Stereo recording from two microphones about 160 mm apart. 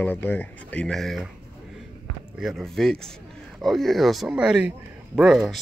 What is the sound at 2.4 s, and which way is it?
Speech, centre (ahead or behind).